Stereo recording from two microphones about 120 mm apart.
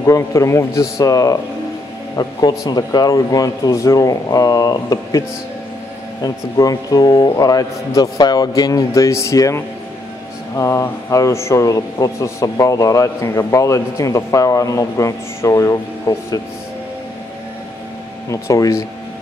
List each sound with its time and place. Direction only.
0.0 s a man's voice: 25° left (ahead or behind)
6.2 s a man's voice: 30° left (ahead or behind)
18.3 s a man's voice: 25° left (ahead or behind)